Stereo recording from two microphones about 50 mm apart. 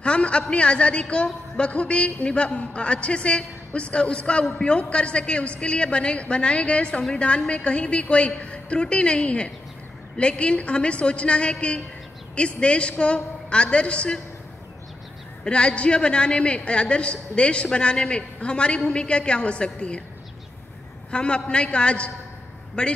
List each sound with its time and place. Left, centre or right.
0.0 s a woman's voice: left
15.4 s a woman's voice: left
21.1 s a woman's voice: left